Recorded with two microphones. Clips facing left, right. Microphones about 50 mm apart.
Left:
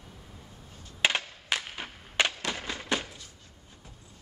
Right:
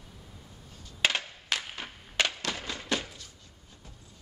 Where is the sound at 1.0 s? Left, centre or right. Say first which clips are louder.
Left 1 dB; centre.